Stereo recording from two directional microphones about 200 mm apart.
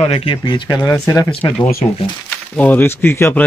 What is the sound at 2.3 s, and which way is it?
Speech, 5° left (ahead or behind).